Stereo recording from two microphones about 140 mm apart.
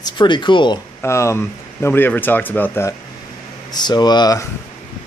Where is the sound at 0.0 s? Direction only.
35° left (ahead or behind).